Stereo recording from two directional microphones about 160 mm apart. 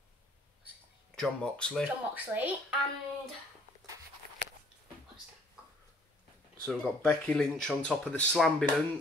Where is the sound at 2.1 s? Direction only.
10° right (ahead or behind).